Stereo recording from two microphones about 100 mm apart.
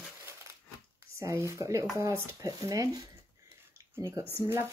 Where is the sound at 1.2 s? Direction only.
30° right (ahead or behind).